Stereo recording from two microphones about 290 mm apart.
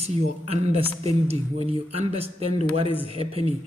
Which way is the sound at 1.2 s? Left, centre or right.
Right.